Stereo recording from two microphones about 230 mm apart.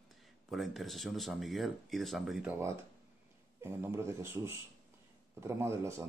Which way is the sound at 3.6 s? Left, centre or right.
Centre.